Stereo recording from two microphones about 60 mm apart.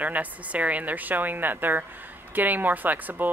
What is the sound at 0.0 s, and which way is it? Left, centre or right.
Speech, right.